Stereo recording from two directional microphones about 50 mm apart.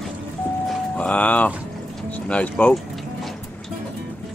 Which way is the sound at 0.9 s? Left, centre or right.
Left.